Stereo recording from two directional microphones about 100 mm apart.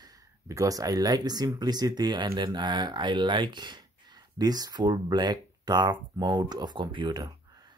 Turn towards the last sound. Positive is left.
turn(degrees=-55)  # may be behind; listen again after turning